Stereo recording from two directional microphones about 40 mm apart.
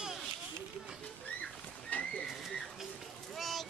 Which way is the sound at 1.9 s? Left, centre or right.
Left.